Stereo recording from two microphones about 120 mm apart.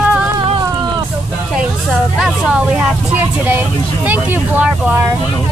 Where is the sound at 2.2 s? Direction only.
10° right (ahead or behind).